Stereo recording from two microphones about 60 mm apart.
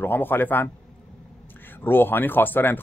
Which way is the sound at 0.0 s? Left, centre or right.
Left.